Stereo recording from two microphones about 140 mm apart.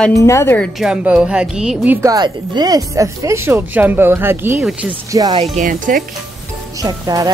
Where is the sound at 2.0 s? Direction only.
30° right (ahead or behind); by 4.9 s 10° right (ahead or behind).